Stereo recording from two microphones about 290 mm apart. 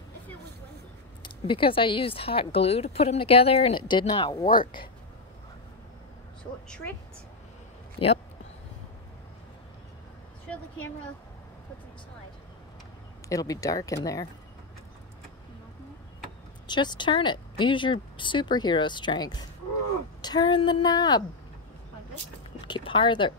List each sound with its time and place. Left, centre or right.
1.2 s speech: centre
8.0 s speech: centre
13.3 s speech: centre
16.6 s speech: centre
22.7 s speech: centre